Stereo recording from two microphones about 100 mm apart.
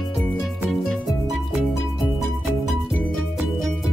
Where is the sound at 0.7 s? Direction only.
Centre (ahead or behind).